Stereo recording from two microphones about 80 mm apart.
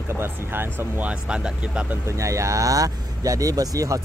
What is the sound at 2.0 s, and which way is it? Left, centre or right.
Speech, right.